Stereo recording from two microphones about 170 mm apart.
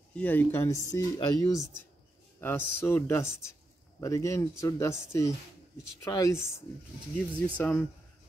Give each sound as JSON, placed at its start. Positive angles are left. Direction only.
{"t": 0.1, "sound": "speech", "side_deg": 10}
{"t": 7.5, "sound": "speech", "side_deg": 10}